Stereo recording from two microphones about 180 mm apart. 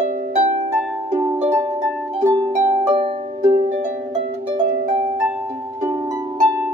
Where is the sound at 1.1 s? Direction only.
30° right (ahead or behind).